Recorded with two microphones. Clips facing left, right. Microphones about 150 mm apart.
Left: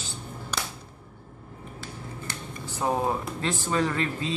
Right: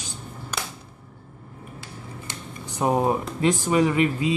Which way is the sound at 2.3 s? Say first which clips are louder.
Even; 20° right (ahead or behind).